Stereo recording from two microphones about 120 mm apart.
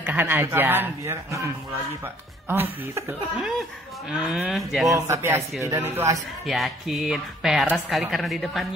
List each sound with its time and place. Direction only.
0.0 s speech: 15° right (ahead or behind)
3.3 s speech: centre (ahead or behind)
4.8 s speech: 25° right (ahead or behind)
6.4 s speech: centre (ahead or behind)